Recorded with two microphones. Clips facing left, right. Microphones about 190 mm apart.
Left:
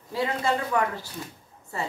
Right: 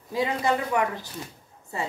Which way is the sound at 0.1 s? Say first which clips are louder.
Right 1 dB; 15° right (ahead or behind).